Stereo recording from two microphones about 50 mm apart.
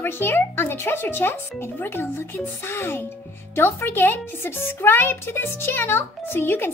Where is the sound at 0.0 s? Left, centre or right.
Left.